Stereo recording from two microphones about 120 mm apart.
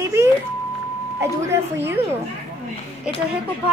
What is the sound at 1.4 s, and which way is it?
Speech, 20° right (ahead or behind).